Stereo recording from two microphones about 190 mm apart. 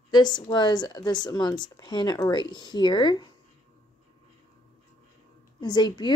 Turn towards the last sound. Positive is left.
turn(degrees=25)  # may be behind; listen again after turning